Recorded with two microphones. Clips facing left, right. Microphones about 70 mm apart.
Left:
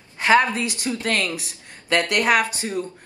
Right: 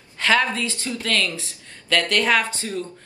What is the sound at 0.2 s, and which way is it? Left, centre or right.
A woman's voice, left.